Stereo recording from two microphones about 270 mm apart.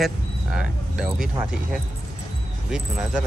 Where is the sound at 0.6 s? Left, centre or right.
Centre.